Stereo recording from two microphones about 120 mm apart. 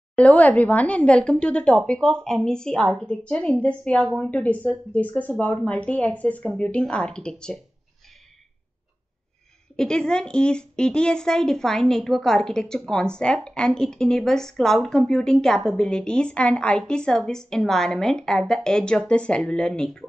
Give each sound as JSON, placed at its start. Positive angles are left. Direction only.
{"t": 0.1, "sound": "speech", "side_deg": 10}
{"t": 9.8, "sound": "a woman's voice", "side_deg": 5}